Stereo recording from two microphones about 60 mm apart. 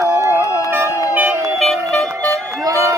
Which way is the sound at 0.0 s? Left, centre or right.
Right.